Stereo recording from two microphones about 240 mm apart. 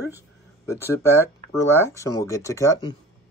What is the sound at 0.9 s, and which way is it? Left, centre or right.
Speech, centre.